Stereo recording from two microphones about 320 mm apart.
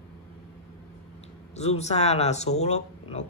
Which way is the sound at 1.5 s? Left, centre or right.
Centre.